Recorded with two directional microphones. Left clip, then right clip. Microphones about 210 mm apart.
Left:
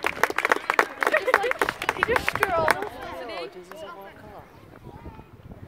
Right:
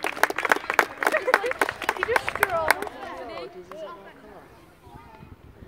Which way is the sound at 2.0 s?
35° left (ahead or behind).